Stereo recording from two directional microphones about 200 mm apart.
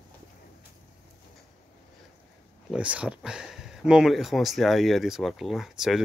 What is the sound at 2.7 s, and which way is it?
Speech, 5° right (ahead or behind).